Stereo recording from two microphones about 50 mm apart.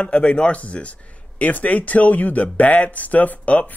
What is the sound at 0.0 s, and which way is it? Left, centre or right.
Speech, left.